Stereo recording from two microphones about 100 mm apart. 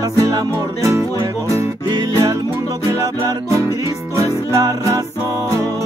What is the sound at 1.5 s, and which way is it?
Music, 40° right (ahead or behind).